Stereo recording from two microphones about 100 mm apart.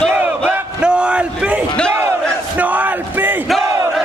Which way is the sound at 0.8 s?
10° right (ahead or behind).